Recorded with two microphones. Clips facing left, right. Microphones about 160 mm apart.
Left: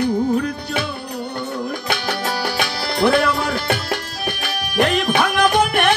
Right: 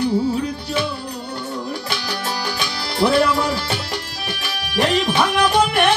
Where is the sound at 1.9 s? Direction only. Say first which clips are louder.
Left 3 dB; 55° left (ahead or behind).